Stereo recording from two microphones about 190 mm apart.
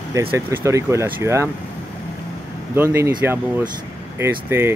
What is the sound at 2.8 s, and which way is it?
Speech, 15° right (ahead or behind).